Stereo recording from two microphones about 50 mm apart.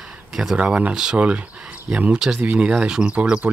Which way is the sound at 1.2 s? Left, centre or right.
Right.